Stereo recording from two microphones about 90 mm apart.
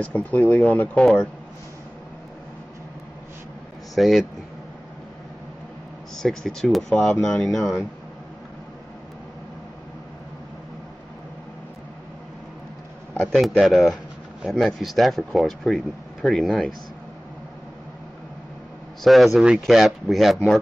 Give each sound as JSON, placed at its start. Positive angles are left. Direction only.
{"t": 0.0, "sound": "speech", "side_deg": 15}
{"t": 3.9, "sound": "speech", "side_deg": 0}
{"t": 6.1, "sound": "speech", "side_deg": 5}
{"t": 13.2, "sound": "speech", "side_deg": 0}
{"t": 19.0, "sound": "speech", "side_deg": 0}